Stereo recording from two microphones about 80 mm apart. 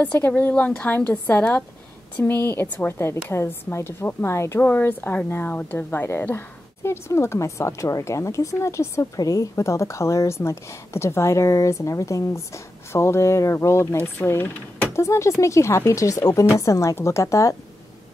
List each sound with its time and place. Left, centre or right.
0.0 s a woman's voice: left
4.6 s a woman's voice: left
15.0 s a woman's voice: left